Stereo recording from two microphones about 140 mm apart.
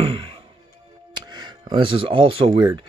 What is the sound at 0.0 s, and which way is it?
Music, 40° right (ahead or behind).